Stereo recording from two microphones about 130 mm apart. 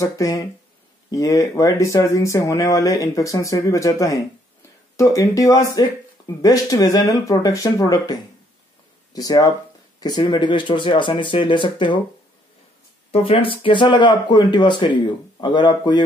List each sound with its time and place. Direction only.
0.0 s speech: 25° left (ahead or behind)
13.1 s speech: 45° left (ahead or behind)